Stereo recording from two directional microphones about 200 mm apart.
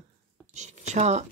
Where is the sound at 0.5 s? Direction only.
35° right (ahead or behind).